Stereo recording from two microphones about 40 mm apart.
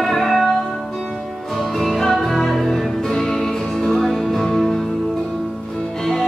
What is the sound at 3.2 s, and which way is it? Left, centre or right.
Music, left.